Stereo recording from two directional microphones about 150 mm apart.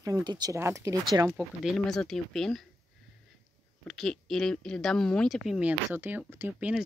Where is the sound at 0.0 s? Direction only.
25° right (ahead or behind).